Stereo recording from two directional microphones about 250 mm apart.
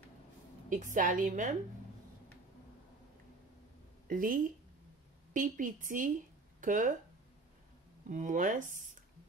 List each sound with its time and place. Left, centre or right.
0.7 s a woman's voice: right
4.1 s a woman's voice: right
8.1 s a woman's voice: right